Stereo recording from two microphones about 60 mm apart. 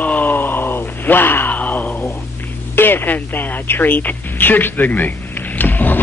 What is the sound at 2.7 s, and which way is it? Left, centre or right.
A woman's voice, left.